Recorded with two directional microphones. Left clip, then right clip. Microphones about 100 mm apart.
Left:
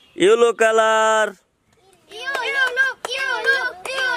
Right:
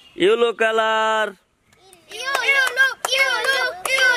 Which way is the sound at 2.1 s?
15° right (ahead or behind).